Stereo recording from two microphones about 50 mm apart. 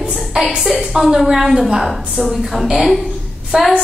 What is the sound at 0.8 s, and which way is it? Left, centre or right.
A woman's voice, centre.